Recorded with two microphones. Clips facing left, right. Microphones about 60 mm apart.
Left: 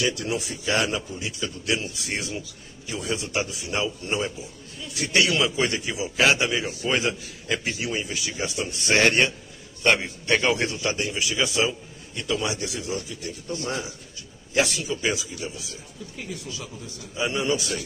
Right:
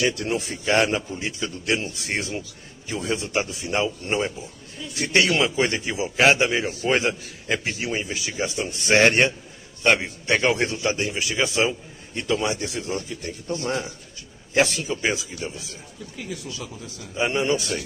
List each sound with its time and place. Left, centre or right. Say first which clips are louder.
0.0 s a man's voice: right 2 dB; right
9.8 s a man's voice: right 1 dB; right
17.2 s a man's voice: right 3 dB; right